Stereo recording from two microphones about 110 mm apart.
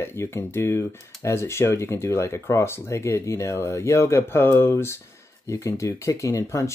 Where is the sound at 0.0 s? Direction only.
25° left (ahead or behind).